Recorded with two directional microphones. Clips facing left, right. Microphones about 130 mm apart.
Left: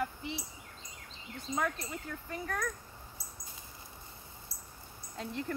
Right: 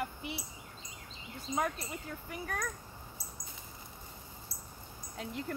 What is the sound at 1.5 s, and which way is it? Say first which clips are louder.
Speech: right 1 dB; 15° right (ahead or behind).